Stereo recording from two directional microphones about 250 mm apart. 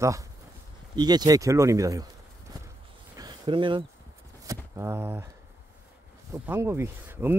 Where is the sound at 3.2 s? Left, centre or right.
Centre.